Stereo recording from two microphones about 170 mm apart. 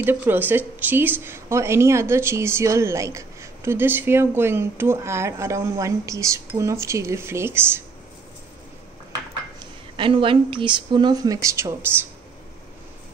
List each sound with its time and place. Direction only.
0.0 s a woman's voice: 10° right (ahead or behind)
9.9 s speech: 30° right (ahead or behind)